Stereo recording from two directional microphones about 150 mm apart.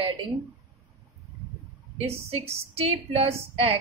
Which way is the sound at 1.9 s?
40° right (ahead or behind).